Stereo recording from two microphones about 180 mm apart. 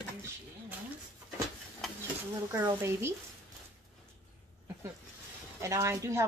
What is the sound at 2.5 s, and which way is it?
Speech, 15° right (ahead or behind).